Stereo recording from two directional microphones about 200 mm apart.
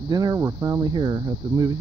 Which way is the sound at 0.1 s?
20° right (ahead or behind).